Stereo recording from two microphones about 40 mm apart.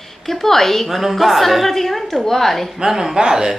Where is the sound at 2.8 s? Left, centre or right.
Centre.